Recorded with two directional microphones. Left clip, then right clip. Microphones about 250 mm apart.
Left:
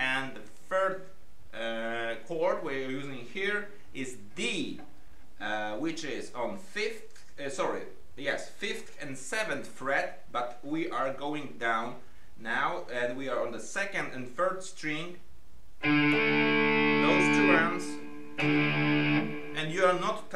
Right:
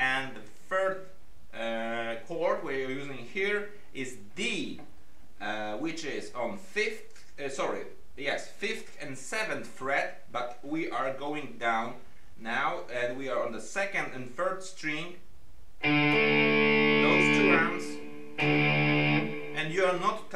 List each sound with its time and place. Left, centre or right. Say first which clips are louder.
0.7 s a sound: even; centre
5.4 s speech: left 1 dB; centre
15.8 s speech: right 1 dB; centre
18.3 s music: right 2 dB; centre
19.5 s a man's voice: left 1 dB; centre